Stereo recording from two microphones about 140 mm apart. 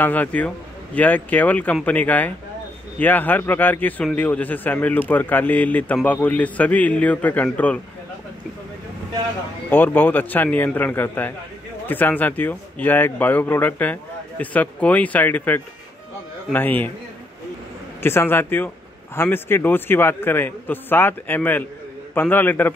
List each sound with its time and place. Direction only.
0.0 s a man's voice: 10° left (ahead or behind)
9.7 s a man's voice: 15° left (ahead or behind)
18.0 s a man's voice: 15° left (ahead or behind)